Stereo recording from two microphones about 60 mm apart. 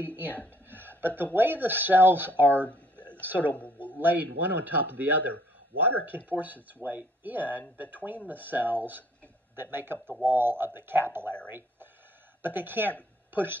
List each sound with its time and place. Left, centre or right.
0.0 s speech: right
3.5 s a man's voice: left
4.0 s speech: right
11.4 s a sound: right
12.4 s speech: right